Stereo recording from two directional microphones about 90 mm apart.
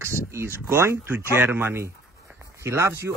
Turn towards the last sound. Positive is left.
turn(degrees=-30)  # may be behind; listen again after turning